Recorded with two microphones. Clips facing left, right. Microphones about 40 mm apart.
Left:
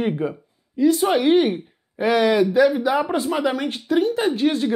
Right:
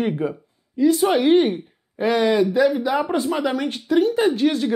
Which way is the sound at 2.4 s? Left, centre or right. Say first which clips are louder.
Left 1 dB; centre.